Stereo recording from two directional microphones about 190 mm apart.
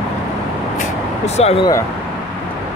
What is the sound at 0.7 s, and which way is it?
Vehicle, 35° left (ahead or behind).